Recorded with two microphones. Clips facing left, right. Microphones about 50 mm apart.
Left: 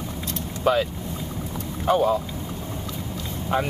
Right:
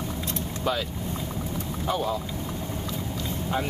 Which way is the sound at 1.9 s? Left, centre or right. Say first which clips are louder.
Left 8 dB; left.